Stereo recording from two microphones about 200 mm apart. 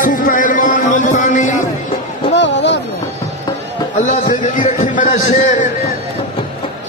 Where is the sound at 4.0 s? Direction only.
35° left (ahead or behind).